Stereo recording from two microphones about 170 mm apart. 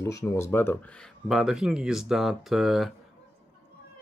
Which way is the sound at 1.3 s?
Centre (ahead or behind).